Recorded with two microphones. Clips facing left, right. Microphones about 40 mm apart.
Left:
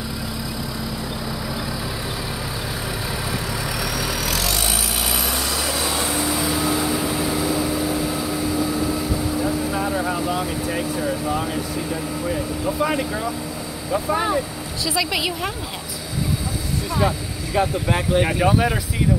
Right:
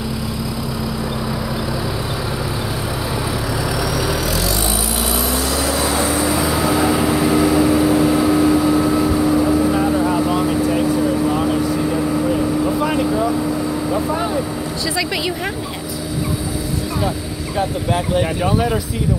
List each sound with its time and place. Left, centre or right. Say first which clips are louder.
6.8 s vehicle: right 7 dB; right
18.4 s vehicle: right 1 dB; centre